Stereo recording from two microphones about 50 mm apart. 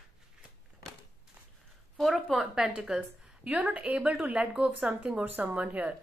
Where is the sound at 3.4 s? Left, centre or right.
Right.